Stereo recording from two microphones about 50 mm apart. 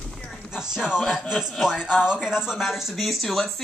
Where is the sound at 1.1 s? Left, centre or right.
Centre.